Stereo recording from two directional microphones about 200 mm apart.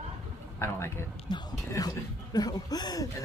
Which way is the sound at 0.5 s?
10° left (ahead or behind).